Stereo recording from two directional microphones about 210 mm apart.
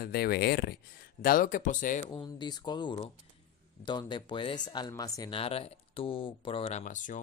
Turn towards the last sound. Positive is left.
turn(degrees=40)  # may be behind; listen again after turning